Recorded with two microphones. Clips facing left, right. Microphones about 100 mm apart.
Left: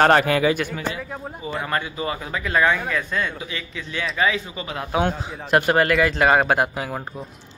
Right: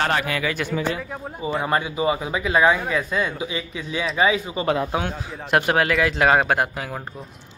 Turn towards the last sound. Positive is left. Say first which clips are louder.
# left 2 dB
turn(degrees=5)  # may be behind; listen again after turning